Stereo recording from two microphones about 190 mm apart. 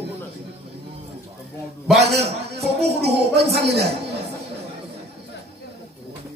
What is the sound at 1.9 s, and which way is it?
Speech, 35° right (ahead or behind).